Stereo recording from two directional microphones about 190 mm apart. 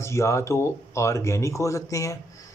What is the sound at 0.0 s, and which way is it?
Speech, 15° left (ahead or behind).